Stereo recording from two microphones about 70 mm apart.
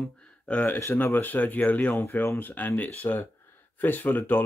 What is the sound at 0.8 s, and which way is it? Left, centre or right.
Speech, left.